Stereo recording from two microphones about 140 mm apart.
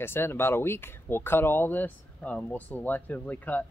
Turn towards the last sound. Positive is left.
turn(degrees=10)  # may be behind; listen again after turning